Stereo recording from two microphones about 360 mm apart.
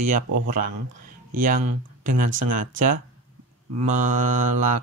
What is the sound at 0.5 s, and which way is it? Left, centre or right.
Speech, right.